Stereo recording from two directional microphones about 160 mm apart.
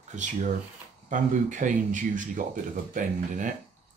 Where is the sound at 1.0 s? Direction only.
50° right (ahead or behind).